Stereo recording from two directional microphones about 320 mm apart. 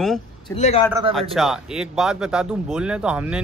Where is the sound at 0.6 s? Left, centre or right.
Centre.